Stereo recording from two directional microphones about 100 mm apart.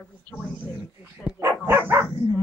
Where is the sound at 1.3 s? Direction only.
25° right (ahead or behind).